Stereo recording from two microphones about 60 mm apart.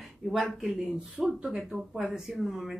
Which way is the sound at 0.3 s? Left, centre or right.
Centre.